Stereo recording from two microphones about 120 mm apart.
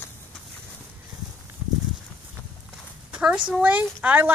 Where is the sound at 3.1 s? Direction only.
10° right (ahead or behind).